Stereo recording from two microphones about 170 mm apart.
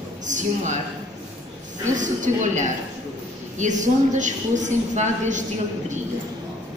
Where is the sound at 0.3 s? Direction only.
45° right (ahead or behind).